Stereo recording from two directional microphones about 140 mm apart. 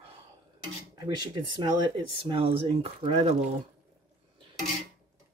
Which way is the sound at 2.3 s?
40° right (ahead or behind).